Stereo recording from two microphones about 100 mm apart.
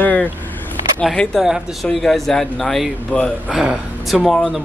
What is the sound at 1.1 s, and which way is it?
Speech, 10° left (ahead or behind).